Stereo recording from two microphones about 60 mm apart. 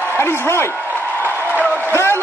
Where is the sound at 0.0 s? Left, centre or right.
Left.